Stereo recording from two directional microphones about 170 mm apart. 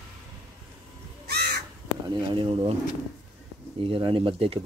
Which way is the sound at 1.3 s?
65° right (ahead or behind).